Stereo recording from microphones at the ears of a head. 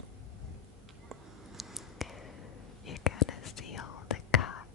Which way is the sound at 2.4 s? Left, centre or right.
Left.